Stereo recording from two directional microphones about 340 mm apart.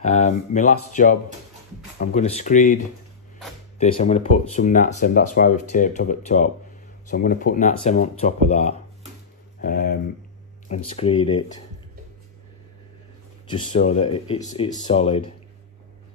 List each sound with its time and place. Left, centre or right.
0.0 s speech: left
9.6 s a sound: left
10.7 s speech: centre
13.5 s speech: centre